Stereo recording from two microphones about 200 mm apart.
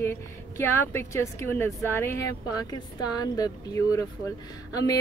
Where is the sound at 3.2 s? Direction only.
20° left (ahead or behind).